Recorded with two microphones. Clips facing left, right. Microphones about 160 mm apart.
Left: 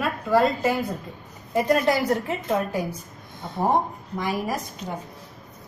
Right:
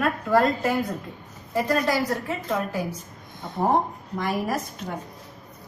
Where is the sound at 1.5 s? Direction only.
20° left (ahead or behind).